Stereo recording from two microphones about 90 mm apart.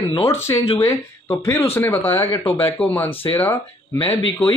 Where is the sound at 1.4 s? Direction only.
30° left (ahead or behind).